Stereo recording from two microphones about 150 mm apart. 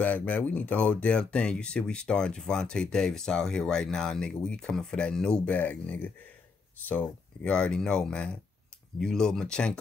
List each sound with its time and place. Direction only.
0.0 s speech: 10° left (ahead or behind)